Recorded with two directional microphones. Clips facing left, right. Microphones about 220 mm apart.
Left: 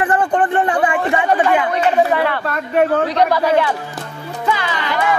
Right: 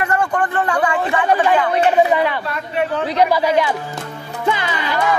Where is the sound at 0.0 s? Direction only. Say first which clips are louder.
Left 3 dB; 30° left (ahead or behind).